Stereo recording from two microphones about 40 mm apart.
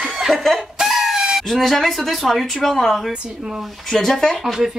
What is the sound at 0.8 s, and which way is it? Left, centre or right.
Chicken, centre.